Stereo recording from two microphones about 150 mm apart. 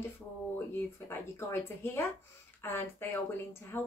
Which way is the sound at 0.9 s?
15° left (ahead or behind).